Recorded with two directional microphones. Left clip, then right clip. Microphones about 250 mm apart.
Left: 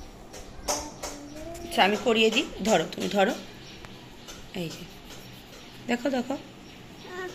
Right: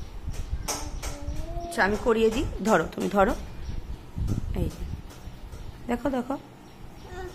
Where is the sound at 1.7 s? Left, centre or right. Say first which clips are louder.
Left 1 dB; centre.